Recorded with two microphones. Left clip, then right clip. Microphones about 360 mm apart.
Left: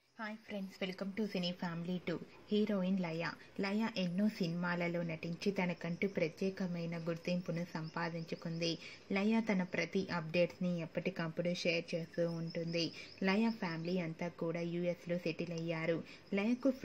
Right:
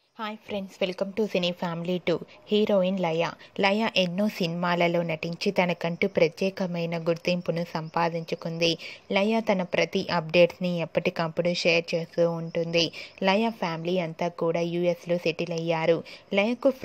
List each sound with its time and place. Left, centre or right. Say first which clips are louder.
0.2 s a woman's voice: right 12 dB; centre